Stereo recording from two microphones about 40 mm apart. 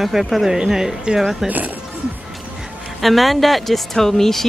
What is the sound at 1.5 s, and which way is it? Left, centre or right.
Speech, right.